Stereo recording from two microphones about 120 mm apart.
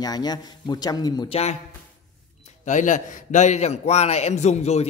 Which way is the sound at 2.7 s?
90° left.